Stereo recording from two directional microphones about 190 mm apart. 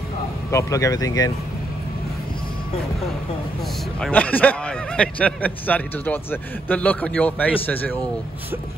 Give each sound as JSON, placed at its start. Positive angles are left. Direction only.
{"t": 0.5, "sound": "a man's voice", "side_deg": 15}
{"t": 4.0, "sound": "a man's voice", "side_deg": 10}